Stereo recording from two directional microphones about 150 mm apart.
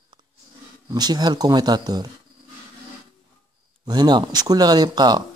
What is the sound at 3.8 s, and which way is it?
Speech, 30° right (ahead or behind).